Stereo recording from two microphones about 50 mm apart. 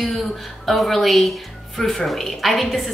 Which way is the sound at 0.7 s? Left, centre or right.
Centre.